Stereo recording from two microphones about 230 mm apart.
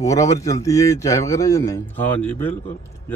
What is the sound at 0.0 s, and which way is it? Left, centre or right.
A man's voice, centre.